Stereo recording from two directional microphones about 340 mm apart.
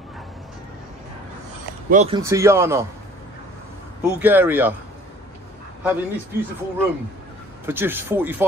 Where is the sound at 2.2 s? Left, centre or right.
Centre.